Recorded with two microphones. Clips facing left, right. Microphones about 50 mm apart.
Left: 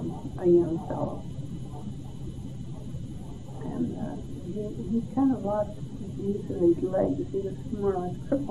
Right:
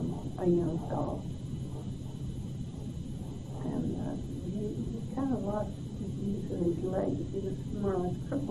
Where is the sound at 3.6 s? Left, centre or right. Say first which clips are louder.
Left 3 dB; centre.